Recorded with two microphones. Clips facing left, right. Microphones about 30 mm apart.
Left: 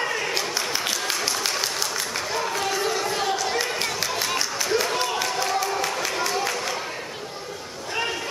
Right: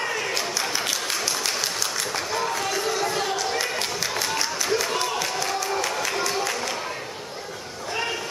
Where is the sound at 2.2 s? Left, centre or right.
Centre.